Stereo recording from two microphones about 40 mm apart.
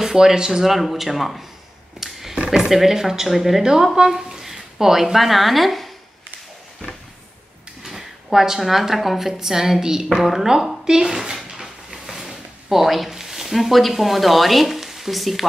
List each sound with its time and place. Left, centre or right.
0.0 s speech: centre
0.7 s speech: centre
2.0 s a sound: centre
2.5 s speech: centre
7.8 s speech: centre
11.5 s a sound: centre